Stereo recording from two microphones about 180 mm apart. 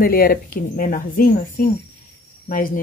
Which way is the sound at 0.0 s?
55° left (ahead or behind).